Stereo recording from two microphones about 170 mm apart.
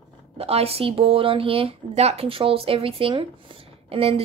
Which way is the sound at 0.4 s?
35° right (ahead or behind).